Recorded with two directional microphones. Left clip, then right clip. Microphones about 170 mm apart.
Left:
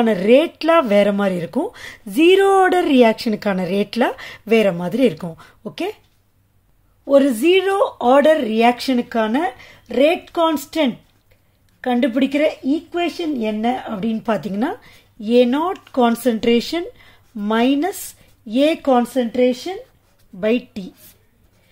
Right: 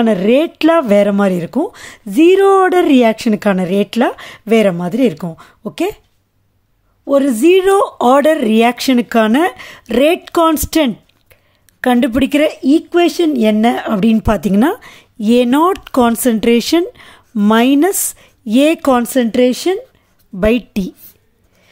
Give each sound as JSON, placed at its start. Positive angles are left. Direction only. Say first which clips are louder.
{"t": 0.0, "sound": "speech", "louder": "right 2 dB", "side_deg": -25}
{"t": 7.1, "sound": "speech", "louder": "right 3 dB", "side_deg": -25}
{"t": 20.3, "sound": "speech", "louder": "right 6 dB", "side_deg": -50}